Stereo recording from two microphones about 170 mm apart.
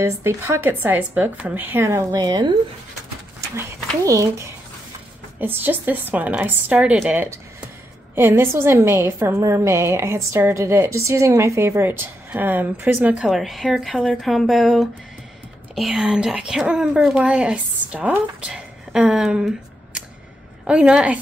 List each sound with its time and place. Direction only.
0.0 s a woman's voice: 15° right (ahead or behind)
20.6 s speech: 5° right (ahead or behind)